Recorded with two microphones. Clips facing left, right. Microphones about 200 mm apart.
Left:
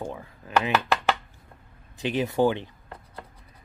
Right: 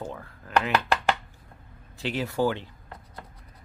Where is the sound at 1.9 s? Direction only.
20° left (ahead or behind).